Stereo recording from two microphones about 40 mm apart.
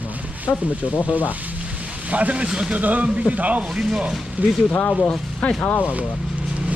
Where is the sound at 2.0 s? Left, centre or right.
Right.